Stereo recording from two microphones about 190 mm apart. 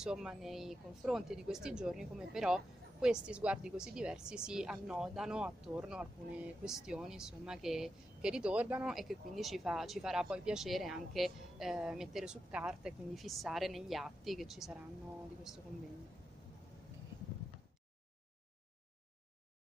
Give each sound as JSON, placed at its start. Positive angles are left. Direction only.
{"t": 0.0, "sound": "speech", "side_deg": -5}